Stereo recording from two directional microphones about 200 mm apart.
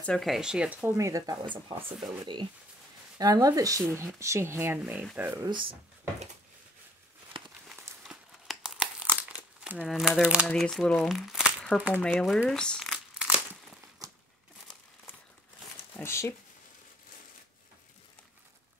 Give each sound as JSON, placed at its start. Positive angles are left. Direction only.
{"t": 0.0, "sound": "speech", "side_deg": 5}
{"t": 8.0, "sound": "crumpling", "side_deg": 0}
{"t": 10.5, "sound": "speech", "side_deg": 0}
{"t": 14.0, "sound": "crumpling", "side_deg": -15}
{"t": 16.0, "sound": "speech", "side_deg": 15}